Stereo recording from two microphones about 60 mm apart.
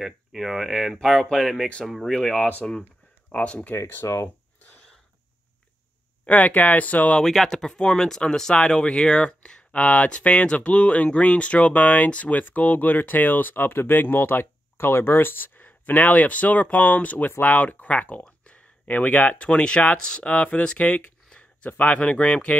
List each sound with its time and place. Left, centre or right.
0.0 s speech: centre
3.3 s speech: left
3.7 s speech: left
6.2 s speech: left
7.2 s speech: centre